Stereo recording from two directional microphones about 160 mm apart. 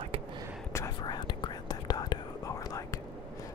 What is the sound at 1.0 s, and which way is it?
Whispering, 25° left (ahead or behind).